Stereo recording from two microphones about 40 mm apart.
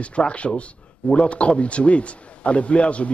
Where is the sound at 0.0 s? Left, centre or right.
Left.